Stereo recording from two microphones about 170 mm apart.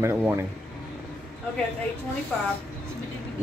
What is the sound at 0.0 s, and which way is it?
Speech, 10° right (ahead or behind).